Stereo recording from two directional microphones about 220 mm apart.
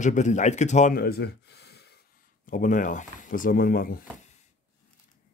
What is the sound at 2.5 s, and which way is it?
Speech, 35° left (ahead or behind).